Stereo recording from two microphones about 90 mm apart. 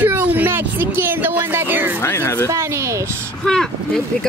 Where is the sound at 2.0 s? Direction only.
30° left (ahead or behind).